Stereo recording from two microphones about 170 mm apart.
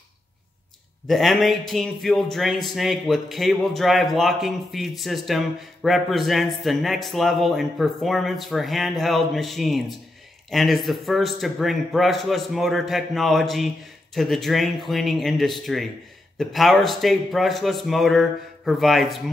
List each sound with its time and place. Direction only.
1.0 s speech: centre (ahead or behind)